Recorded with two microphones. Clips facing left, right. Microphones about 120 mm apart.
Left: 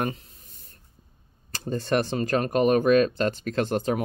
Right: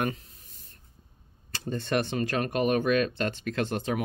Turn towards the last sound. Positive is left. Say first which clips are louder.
# left 4 dB
turn(degrees=40)  # may be behind; listen again after turning